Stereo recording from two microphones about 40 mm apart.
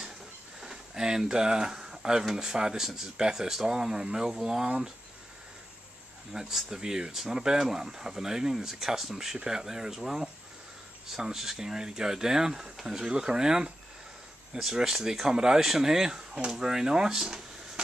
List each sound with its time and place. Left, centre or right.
0.6 s speech: centre
6.3 s speech: centre